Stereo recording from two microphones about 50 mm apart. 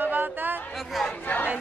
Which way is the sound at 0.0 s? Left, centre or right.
Right.